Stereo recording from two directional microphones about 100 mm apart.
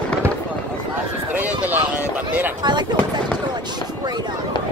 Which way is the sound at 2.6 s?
50° right (ahead or behind).